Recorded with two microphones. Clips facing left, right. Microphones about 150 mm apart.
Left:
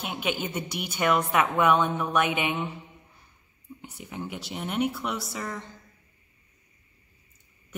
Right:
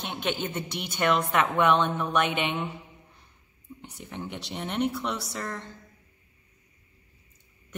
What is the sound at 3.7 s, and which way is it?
Speech, 5° left (ahead or behind).